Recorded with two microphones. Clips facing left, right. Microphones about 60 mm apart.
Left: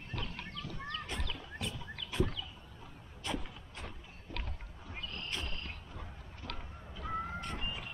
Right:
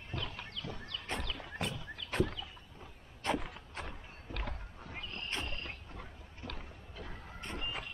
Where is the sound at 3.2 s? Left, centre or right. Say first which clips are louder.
Right 5 dB; right.